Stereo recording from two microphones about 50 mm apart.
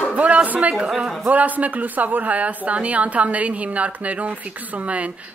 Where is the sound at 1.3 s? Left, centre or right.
Right.